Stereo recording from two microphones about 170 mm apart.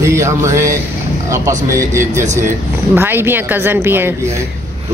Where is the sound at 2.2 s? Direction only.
45° right (ahead or behind).